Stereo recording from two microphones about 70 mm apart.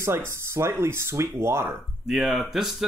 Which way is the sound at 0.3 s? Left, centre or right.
Right.